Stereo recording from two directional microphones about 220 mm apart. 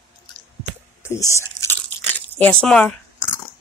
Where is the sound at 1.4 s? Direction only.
10° left (ahead or behind).